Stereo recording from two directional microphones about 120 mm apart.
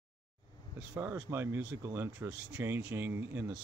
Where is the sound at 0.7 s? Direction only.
10° right (ahead or behind).